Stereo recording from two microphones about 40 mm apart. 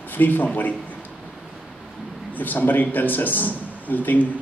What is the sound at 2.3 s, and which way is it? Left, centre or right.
A man's voice, left.